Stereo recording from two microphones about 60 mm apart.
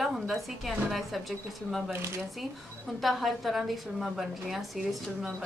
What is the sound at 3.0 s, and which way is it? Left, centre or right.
A woman's voice, centre.